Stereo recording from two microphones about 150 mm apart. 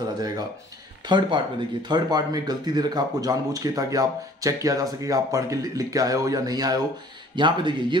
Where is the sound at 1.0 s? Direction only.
30° right (ahead or behind).